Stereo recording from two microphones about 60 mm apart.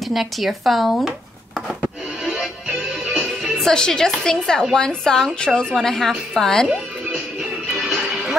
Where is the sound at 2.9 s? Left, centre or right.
Centre.